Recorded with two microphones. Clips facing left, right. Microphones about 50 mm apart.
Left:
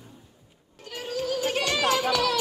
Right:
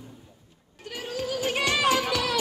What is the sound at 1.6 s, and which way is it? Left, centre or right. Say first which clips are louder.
Music: right 2 dB; centre.